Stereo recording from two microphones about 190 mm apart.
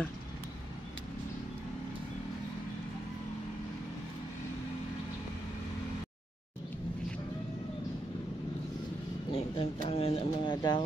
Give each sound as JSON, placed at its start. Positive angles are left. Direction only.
{"t": 9.3, "sound": "speech", "side_deg": 30}